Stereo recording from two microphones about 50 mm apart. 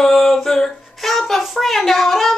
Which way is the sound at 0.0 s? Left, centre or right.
Centre.